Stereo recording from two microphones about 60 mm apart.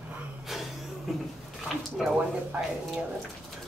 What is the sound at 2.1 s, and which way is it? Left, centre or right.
Speech, right.